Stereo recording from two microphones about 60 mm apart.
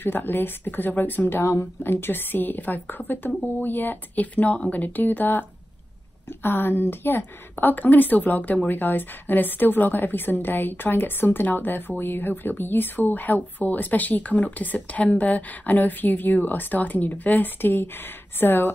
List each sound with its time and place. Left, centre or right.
0.0 s speech: left
1.4 s speech: left
1.8 s speech: left